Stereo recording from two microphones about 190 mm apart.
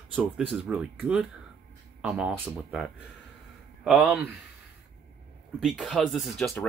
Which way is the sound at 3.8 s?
5° right (ahead or behind).